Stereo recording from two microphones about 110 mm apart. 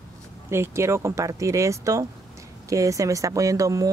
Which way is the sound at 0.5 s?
25° right (ahead or behind).